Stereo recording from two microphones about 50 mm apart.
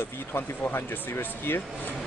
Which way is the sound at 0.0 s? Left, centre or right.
Left.